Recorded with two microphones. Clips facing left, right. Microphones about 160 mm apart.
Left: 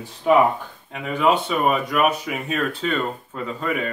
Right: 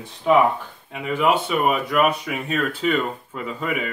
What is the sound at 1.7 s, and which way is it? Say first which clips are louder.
Speech: even; centre (ahead or behind).